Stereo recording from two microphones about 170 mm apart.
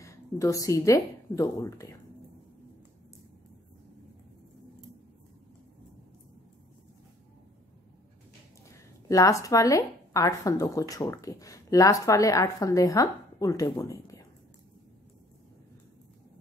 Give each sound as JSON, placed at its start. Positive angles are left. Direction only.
{"t": 0.0, "sound": "a woman's voice", "side_deg": 20}
{"t": 8.7, "sound": "a woman's voice", "side_deg": 20}